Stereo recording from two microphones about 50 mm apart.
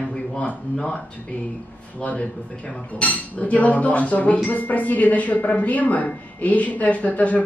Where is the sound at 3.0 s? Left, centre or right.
Left.